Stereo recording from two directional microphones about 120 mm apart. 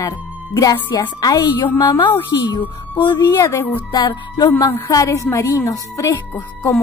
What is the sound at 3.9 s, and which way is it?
Speech, 40° left (ahead or behind).